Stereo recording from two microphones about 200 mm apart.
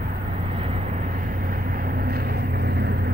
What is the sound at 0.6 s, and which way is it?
Vehicle, 35° right (ahead or behind).